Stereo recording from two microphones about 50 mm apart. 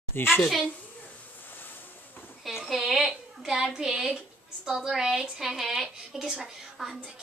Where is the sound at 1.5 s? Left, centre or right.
Left.